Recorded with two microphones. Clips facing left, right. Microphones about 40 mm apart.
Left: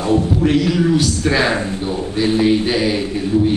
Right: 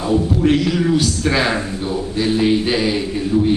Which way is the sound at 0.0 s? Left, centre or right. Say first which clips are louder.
Left 1 dB; left.